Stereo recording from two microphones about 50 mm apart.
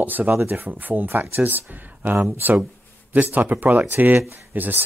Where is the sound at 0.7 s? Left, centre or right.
Right.